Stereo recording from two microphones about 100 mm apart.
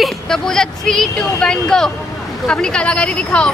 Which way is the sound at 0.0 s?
5° left (ahead or behind).